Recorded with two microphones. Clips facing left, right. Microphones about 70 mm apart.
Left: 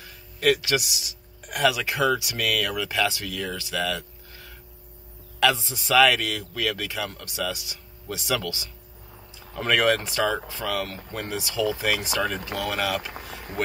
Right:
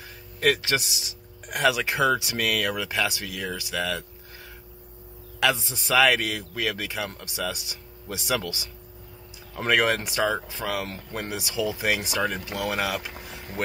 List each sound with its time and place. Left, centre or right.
0.0 s speech: right
5.4 s a man's voice: right